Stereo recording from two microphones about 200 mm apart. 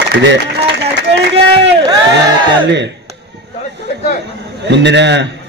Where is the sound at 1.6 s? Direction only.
60° right (ahead or behind).